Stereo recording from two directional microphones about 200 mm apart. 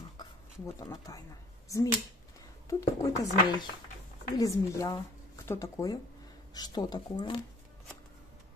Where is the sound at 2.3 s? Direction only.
15° left (ahead or behind).